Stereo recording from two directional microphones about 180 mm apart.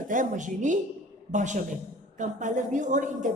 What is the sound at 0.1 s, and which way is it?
Speech, 45° right (ahead or behind).